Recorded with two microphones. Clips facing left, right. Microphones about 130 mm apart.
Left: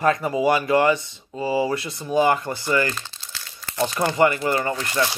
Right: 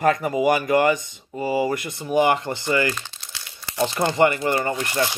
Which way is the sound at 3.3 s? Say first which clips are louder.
Right 1 dB; 15° right (ahead or behind).